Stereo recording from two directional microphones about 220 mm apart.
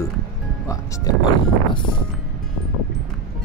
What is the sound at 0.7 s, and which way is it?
Music, 15° left (ahead or behind).